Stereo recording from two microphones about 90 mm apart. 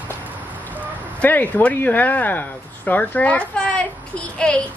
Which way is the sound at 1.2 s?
20° left (ahead or behind).